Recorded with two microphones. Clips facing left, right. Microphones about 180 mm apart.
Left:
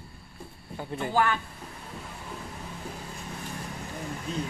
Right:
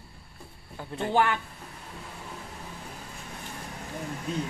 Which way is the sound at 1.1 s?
25° right (ahead or behind).